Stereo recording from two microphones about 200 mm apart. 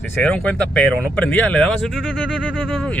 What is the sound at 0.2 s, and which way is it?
Speech, 5° left (ahead or behind).